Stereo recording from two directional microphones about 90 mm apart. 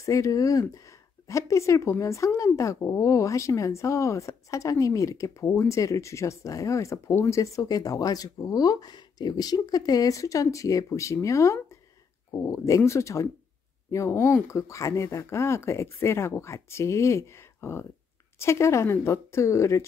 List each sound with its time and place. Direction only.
0.0 s speech: 35° left (ahead or behind)